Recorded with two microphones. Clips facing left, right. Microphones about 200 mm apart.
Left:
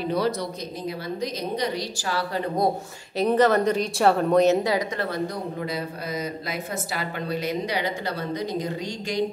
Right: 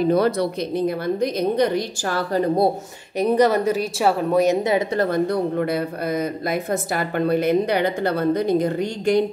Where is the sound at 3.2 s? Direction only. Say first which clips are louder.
Right 2 dB; 10° right (ahead or behind).